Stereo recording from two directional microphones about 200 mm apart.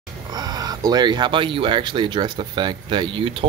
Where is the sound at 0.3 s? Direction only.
20° right (ahead or behind).